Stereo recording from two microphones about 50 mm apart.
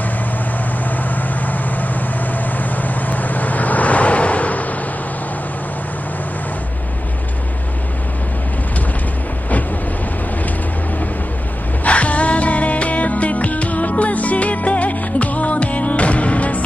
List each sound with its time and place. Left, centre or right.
0.8 s vehicle: left
11.8 s music: left